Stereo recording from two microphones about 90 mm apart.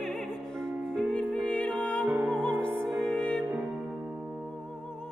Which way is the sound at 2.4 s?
15° left (ahead or behind).